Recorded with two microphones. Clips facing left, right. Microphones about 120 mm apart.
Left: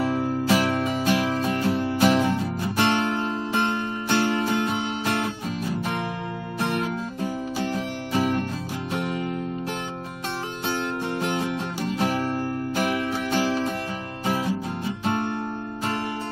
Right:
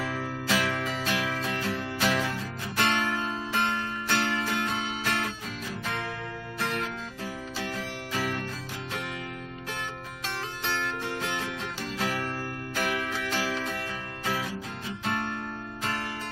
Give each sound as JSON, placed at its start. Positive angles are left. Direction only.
{"t": 0.0, "sound": "music", "side_deg": 25}
{"t": 6.6, "sound": "music", "side_deg": 30}
{"t": 10.8, "sound": "music", "side_deg": 20}
{"t": 12.9, "sound": "music", "side_deg": 30}